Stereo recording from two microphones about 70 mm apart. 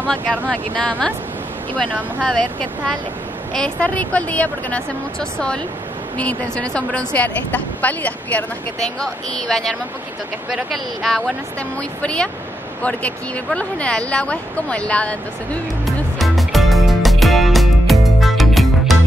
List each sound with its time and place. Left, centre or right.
0.1 s speech: centre
1.9 s speech: right
2.2 s speech: centre
6.1 s speech: centre
9.0 s speech: centre
10.5 s speech: centre
12.0 s speech: centre
13.6 s speech: centre
16.2 s music: centre